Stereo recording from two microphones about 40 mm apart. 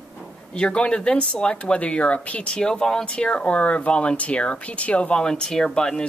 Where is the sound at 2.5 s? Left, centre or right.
Centre.